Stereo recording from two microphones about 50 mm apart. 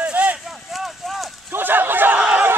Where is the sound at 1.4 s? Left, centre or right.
Right.